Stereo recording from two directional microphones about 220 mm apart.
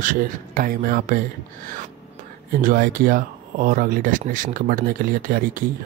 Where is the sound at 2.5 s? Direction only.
40° right (ahead or behind).